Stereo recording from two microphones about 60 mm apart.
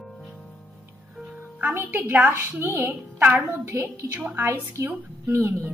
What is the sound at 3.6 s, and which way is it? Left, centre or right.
Speech, right.